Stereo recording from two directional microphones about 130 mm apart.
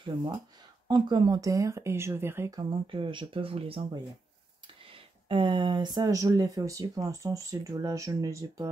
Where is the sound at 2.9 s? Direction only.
40° right (ahead or behind).